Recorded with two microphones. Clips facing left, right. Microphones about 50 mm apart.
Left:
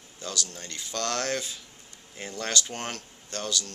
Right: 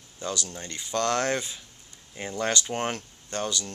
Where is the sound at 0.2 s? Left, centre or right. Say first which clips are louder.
Right 3 dB; right.